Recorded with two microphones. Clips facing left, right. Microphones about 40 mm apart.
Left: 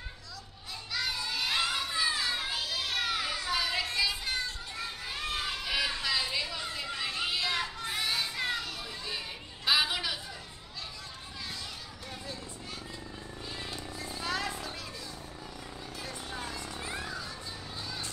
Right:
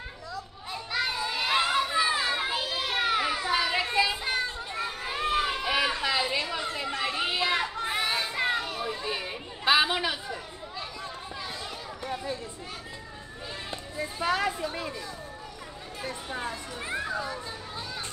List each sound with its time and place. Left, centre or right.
0.9 s children playing: right
13.7 s music: right
16.0 s a sound: right